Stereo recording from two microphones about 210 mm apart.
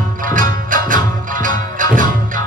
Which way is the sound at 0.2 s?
40° right (ahead or behind).